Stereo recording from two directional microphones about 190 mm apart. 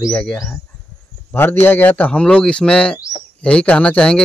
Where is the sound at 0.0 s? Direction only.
5° left (ahead or behind).